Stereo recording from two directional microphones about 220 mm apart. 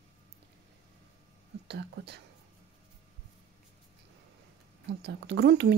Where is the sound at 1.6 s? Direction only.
50° right (ahead or behind).